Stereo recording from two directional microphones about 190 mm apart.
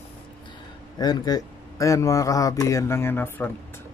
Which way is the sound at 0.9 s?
20° left (ahead or behind).